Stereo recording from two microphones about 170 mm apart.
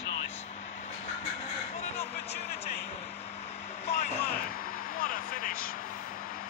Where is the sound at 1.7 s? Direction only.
40° left (ahead or behind).